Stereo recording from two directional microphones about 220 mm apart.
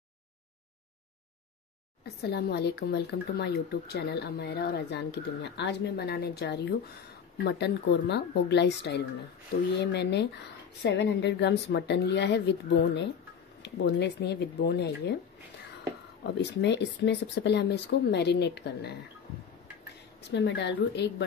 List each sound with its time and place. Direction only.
2.2 s speech: 45° left (ahead or behind)
10.8 s speech: 50° left (ahead or behind)
16.3 s speech: 50° left (ahead or behind)
20.2 s speech: 50° left (ahead or behind)